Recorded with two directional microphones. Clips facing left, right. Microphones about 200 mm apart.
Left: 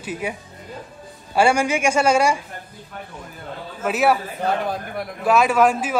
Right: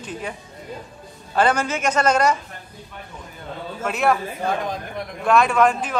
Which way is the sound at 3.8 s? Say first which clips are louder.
Left 2 dB; 5° left (ahead or behind).